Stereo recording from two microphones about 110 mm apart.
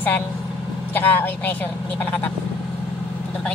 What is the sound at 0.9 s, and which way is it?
Speech, 20° left (ahead or behind).